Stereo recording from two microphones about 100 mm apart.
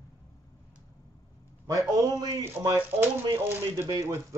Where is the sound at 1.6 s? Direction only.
35° right (ahead or behind).